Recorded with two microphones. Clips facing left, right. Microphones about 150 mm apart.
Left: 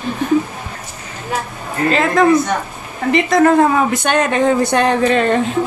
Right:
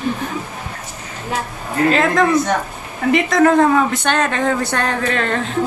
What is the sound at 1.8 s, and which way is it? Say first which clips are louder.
A man's voice: left 3 dB; centre (ahead or behind).